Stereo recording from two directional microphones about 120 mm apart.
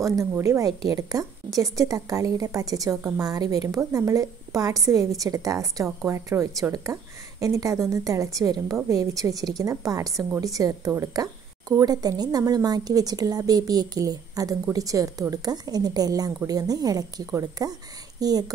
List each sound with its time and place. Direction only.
0.0 s a woman's voice: 25° right (ahead or behind)